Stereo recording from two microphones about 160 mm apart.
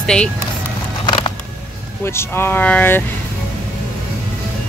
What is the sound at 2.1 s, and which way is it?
Speech, 15° left (ahead or behind).